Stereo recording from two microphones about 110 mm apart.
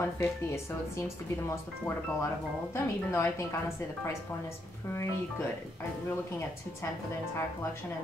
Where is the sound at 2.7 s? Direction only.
25° left (ahead or behind).